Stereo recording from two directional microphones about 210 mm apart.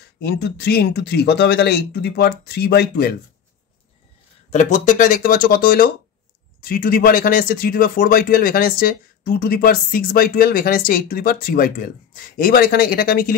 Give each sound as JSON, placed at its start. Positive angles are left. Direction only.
{"t": 0.2, "sound": "speech", "side_deg": 50}
{"t": 4.5, "sound": "speech", "side_deg": 35}